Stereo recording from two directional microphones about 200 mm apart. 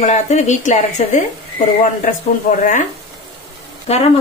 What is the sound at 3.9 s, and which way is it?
Speech, 30° left (ahead or behind).